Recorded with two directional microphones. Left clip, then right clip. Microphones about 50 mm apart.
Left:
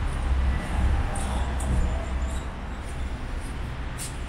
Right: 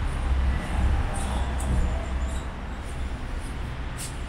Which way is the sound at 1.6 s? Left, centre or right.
Centre.